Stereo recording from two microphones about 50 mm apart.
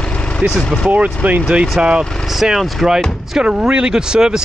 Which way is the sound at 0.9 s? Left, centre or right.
Right.